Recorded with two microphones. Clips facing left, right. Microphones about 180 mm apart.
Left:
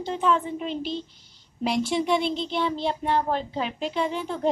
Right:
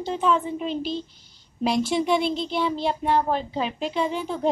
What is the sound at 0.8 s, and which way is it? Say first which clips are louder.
A woman's voice: right 2 dB; 10° right (ahead or behind).